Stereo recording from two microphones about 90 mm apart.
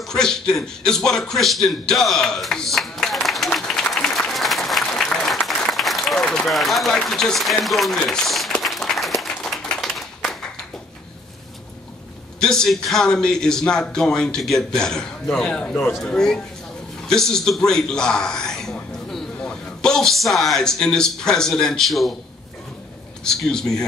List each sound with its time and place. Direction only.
0.0 s a sound: 5° left (ahead or behind)
4.8 s applause: 5° left (ahead or behind)
7.1 s a man's voice: 5° left (ahead or behind)
8.1 s a sound: 5° left (ahead or behind)
9.2 s clapping: 5° left (ahead or behind)
12.4 s a man's voice: 5° left (ahead or behind)
23.2 s a man's voice: 5° left (ahead or behind)